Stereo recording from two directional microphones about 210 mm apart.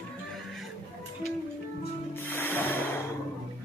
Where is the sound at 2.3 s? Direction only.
10° left (ahead or behind).